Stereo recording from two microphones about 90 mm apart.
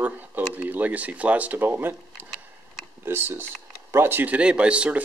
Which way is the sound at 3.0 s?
25° right (ahead or behind).